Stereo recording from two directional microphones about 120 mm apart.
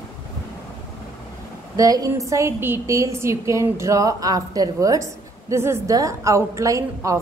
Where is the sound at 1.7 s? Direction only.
30° right (ahead or behind).